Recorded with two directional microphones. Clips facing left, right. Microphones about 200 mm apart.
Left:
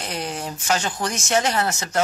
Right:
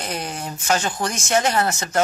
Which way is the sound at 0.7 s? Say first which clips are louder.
Right 2 dB; 50° right (ahead or behind).